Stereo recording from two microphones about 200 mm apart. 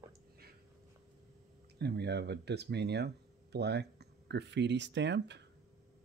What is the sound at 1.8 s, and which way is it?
Speech, 55° right (ahead or behind).